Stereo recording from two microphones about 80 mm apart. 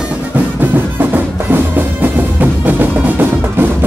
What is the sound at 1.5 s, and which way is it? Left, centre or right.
Music, right.